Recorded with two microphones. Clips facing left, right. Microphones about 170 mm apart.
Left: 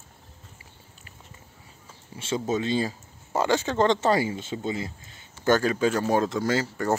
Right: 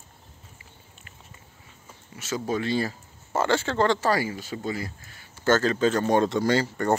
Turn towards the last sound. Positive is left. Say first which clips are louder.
# right 2 dB
turn(degrees=5)  # may be behind; listen again after turning